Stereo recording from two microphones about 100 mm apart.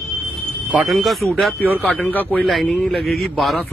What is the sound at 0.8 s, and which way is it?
Speech, centre (ahead or behind).